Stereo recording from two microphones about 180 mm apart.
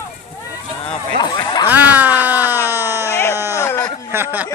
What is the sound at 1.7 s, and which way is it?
Speech, 10° right (ahead or behind).